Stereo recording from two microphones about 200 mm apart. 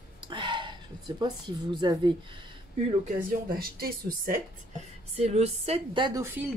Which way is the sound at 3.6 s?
45° right (ahead or behind).